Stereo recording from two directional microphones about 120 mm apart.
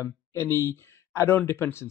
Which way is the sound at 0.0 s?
25° left (ahead or behind).